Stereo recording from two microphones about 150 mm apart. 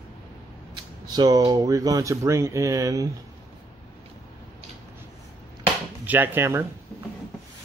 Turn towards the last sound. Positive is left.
turn(degrees=-15)  # may be behind; listen again after turning